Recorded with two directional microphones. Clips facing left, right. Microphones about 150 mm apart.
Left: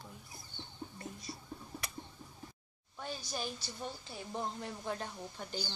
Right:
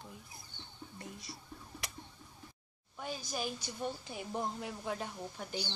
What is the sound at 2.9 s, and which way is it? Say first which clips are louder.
A woman's voice: right 1 dB; 10° right (ahead or behind).